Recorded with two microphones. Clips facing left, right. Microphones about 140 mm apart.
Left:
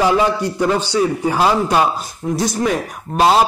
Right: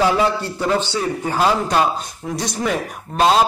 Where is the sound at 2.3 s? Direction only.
Centre (ahead or behind).